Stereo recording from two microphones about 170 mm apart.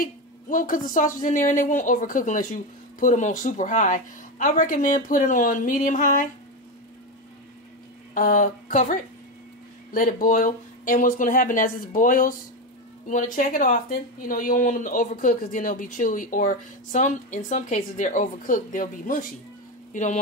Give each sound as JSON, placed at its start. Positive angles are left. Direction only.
{"t": 0.0, "sound": "speech", "side_deg": 55}
{"t": 8.1, "sound": "speech", "side_deg": 55}